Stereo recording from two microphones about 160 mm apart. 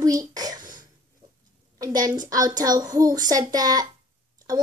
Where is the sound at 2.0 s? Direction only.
25° right (ahead or behind).